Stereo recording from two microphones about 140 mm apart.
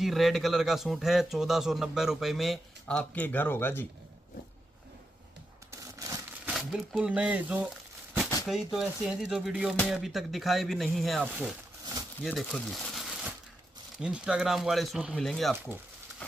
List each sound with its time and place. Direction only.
0.0 s a man's voice: centre (ahead or behind); by 3.8 s 15° left (ahead or behind)
5.7 s a sound: 25° right (ahead or behind)
6.5 s a man's voice: centre (ahead or behind)
12.2 s crumpling: centre (ahead or behind)
13.9 s a man's voice: 5° right (ahead or behind)
15.5 s speech: 15° right (ahead or behind)